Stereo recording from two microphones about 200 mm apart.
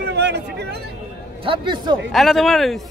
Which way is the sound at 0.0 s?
60° right (ahead or behind).